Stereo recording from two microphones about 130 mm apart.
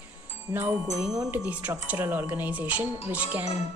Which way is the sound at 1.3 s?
10° right (ahead or behind).